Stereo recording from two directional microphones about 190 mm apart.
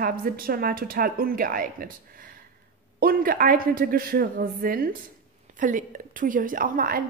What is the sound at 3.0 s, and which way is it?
A woman's voice, 50° right (ahead or behind).